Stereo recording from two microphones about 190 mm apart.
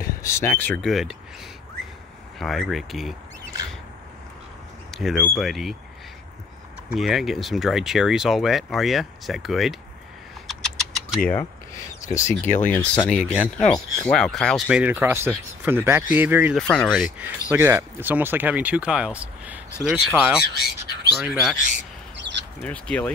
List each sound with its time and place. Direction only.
0.2 s speech: 15° left (ahead or behind)
2.3 s speech: centre (ahead or behind)
4.9 s speech: centre (ahead or behind)
6.9 s speech: 5° right (ahead or behind)
10.4 s typing: centre (ahead or behind)
12.1 s speech: 15° left (ahead or behind)
13.1 s speech: 5° right (ahead or behind)
14.8 s speech: 10° right (ahead or behind)
16.5 s speech: 5° left (ahead or behind)
20.5 s squawk: 55° left (ahead or behind)
21.2 s speech: centre (ahead or behind)
22.3 s a sound: 25° right (ahead or behind)
22.6 s speech: 5° left (ahead or behind)